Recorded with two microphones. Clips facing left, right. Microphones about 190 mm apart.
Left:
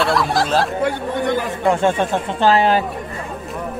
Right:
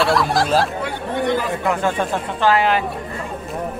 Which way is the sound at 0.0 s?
Centre (ahead or behind).